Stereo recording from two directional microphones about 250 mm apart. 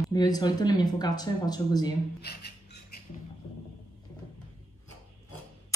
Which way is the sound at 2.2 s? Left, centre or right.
Left.